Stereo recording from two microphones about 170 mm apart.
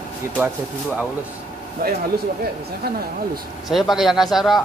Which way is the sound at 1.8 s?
60° right (ahead or behind).